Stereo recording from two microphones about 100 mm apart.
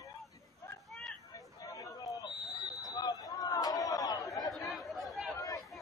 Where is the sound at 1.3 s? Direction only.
35° left (ahead or behind).